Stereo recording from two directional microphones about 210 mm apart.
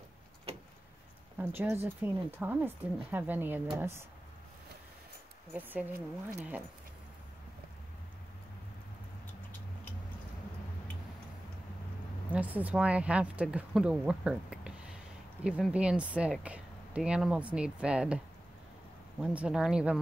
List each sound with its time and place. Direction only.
1.4 s speech: 10° right (ahead or behind)
5.5 s speech: 10° right (ahead or behind)
12.3 s speech: 5° right (ahead or behind)
19.3 s speech: 5° right (ahead or behind)